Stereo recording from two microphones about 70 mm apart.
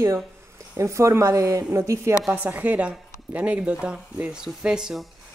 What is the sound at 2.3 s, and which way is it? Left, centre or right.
Speech, right.